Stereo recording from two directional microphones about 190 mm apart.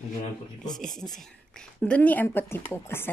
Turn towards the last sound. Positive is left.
turn(degrees=10)  # may be behind; listen again after turning